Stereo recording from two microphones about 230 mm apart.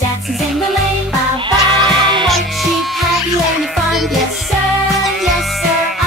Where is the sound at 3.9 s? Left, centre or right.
Centre.